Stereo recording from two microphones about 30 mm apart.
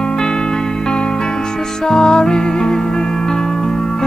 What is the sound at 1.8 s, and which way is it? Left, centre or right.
Music, left.